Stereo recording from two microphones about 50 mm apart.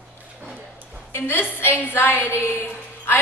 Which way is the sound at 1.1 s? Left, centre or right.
Left.